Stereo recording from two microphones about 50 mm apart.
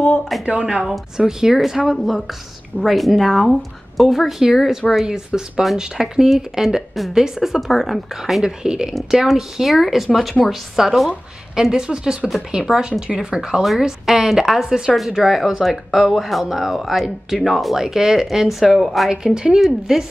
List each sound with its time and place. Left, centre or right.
0.5 s a woman's voice: centre
5.0 s a woman's voice: centre
8.9 s a woman's voice: centre
12.6 s speech: centre
13.0 s a woman's voice: centre
19.0 s a woman's voice: centre